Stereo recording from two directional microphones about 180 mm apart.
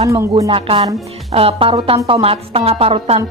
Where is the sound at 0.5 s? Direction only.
30° right (ahead or behind).